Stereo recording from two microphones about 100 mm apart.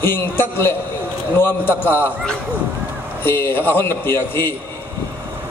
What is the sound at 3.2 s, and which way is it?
A man's voice, 20° left (ahead or behind).